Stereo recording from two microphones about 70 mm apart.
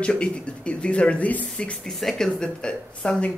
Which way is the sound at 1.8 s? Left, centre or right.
Centre.